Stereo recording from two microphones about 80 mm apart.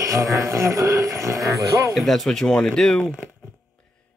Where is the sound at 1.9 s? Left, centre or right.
Centre.